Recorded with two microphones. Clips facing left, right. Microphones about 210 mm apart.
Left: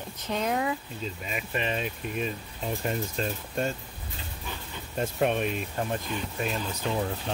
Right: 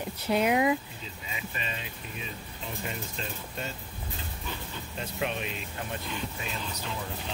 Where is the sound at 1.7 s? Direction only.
60° left (ahead or behind).